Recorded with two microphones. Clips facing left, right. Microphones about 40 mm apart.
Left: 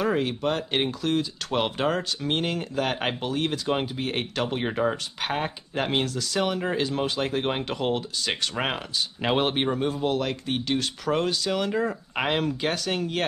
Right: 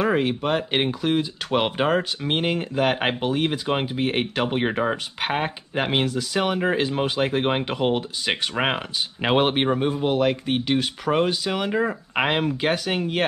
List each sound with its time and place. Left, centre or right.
0.0 s speech: right